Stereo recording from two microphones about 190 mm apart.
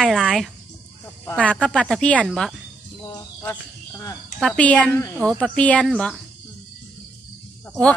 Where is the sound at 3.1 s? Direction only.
15° left (ahead or behind).